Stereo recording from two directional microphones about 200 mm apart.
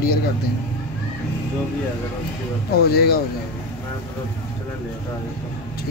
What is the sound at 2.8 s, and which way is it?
Speech, 50° left (ahead or behind).